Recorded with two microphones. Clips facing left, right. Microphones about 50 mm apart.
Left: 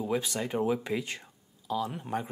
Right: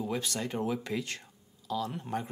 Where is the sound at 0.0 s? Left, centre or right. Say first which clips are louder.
Left 3 dB; centre.